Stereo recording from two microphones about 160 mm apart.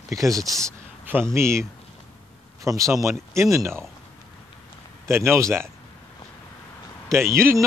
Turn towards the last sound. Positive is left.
turn(degrees=-15)  # may be behind; listen again after turning